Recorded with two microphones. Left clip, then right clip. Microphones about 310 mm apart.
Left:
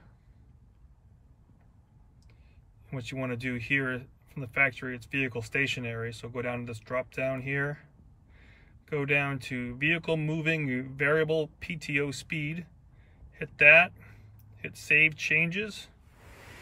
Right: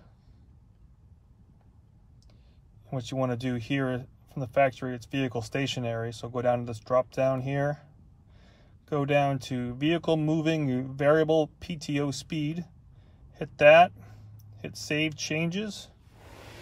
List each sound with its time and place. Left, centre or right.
2.9 s speech: centre